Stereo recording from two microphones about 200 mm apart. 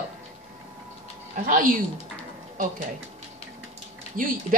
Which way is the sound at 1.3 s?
40° right (ahead or behind).